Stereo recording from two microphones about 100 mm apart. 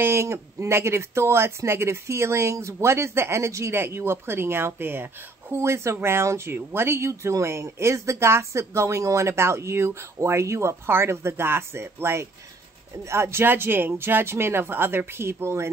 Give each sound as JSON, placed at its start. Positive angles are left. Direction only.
{"t": 0.0, "sound": "speech", "side_deg": -25}